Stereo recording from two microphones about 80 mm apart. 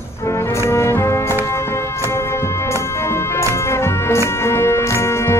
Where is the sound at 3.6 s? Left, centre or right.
Left.